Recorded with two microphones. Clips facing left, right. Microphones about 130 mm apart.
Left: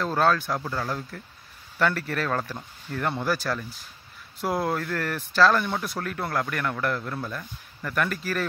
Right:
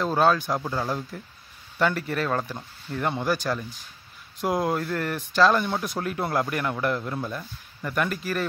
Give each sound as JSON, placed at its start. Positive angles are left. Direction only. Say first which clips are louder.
{"t": 0.0, "sound": "speech", "louder": "right 2 dB", "side_deg": -10}
{"t": 4.4, "sound": "speech", "louder": "right 2 dB", "side_deg": -15}